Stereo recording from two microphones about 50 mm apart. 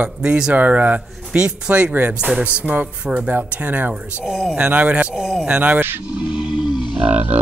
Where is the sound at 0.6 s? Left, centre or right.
Right.